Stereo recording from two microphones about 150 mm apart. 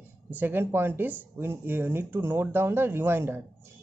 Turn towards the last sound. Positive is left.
turn(degrees=-15)  # may be behind; listen again after turning